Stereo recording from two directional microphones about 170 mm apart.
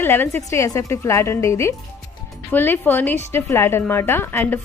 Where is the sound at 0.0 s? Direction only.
10° left (ahead or behind).